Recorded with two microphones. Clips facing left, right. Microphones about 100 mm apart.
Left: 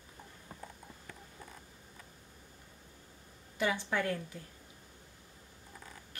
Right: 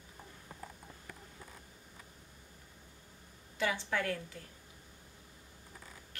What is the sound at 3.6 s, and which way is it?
Speech, 20° left (ahead or behind).